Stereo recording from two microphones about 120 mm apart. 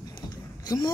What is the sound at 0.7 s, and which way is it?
Speech, 35° left (ahead or behind).